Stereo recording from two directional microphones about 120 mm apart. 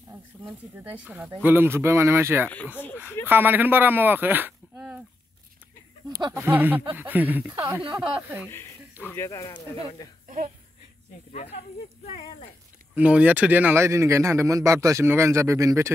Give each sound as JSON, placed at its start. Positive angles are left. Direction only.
{"t": 0.9, "sound": "speech", "side_deg": -10}
{"t": 2.8, "sound": "speech", "side_deg": 15}
{"t": 3.3, "sound": "speech", "side_deg": -15}
{"t": 6.0, "sound": "speech", "side_deg": -35}
{"t": 6.3, "sound": "speech", "side_deg": -15}
{"t": 9.0, "sound": "speech", "side_deg": 20}
{"t": 10.2, "sound": "a sound", "side_deg": -90}
{"t": 11.3, "sound": "speech", "side_deg": 65}
{"t": 12.9, "sound": "speech", "side_deg": -10}